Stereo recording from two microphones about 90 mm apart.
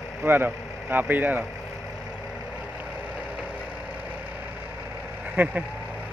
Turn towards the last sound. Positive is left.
turn(degrees=-25)  # may be behind; listen again after turning